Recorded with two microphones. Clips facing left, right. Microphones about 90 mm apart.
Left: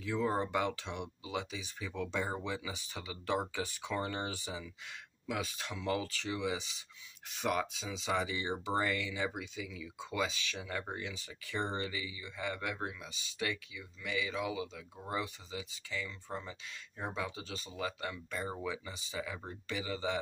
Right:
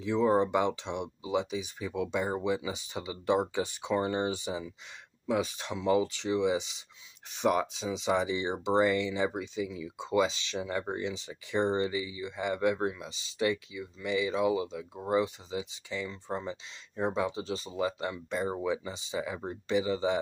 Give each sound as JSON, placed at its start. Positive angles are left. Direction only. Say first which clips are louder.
{"t": 0.0, "sound": "speech", "louder": "right 8 dB", "side_deg": -25}